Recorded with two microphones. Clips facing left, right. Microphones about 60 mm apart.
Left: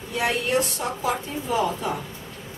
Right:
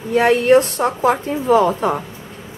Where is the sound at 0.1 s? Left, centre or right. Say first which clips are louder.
Right 12 dB; right.